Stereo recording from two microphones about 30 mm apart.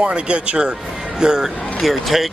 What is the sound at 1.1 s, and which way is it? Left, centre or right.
Speech, right.